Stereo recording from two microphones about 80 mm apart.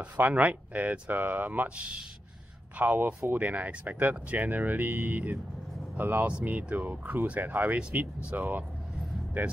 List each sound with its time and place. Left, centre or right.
0.0 s speech: centre